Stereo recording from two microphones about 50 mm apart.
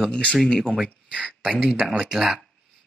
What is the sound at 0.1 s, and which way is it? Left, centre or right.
Speech, left.